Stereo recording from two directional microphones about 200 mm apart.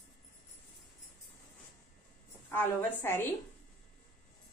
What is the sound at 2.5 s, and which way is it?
Speech, 10° left (ahead or behind).